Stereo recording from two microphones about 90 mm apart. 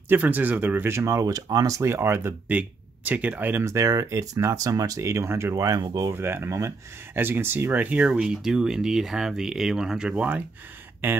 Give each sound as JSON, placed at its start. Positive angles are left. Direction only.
{"t": 0.1, "sound": "speech", "side_deg": -20}
{"t": 1.8, "sound": "speech", "side_deg": -30}
{"t": 2.5, "sound": "speech", "side_deg": -15}
{"t": 3.6, "sound": "speech", "side_deg": -35}
{"t": 6.1, "sound": "speech", "side_deg": -25}